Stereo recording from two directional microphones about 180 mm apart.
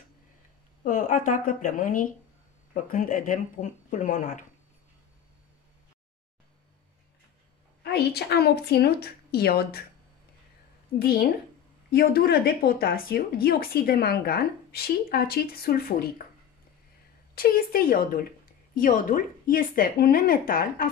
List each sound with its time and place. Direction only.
0.8 s speech: 45° left (ahead or behind)
7.8 s a woman's voice: 65° left (ahead or behind)
11.0 s a woman's voice: 55° left (ahead or behind)
17.4 s a woman's voice: 55° left (ahead or behind)